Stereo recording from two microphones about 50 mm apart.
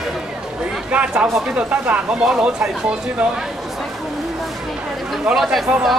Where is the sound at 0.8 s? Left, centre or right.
Right.